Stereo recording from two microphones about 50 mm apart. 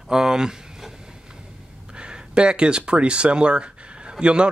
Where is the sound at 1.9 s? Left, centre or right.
Centre.